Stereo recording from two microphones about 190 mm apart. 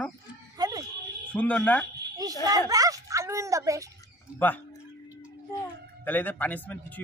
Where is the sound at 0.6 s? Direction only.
20° right (ahead or behind).